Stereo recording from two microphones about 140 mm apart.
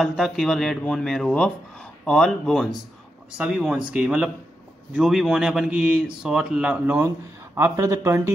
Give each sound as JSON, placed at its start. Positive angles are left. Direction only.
{"t": 0.0, "sound": "a man's voice", "side_deg": 0}
{"t": 7.5, "sound": "speech", "side_deg": -20}